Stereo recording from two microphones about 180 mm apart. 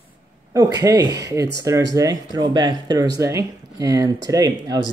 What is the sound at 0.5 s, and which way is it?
Speech, 20° right (ahead or behind).